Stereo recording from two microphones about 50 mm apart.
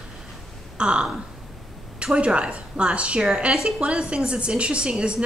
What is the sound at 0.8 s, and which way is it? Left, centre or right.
A woman's voice, right.